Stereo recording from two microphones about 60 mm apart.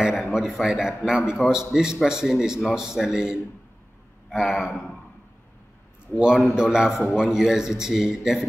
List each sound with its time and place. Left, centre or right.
0.0 s a man's voice: centre
6.1 s a man's voice: centre